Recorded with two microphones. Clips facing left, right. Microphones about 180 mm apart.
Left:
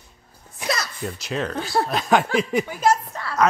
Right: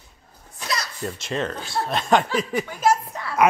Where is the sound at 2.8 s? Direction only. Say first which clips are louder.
Right 3 dB; 10° right (ahead or behind).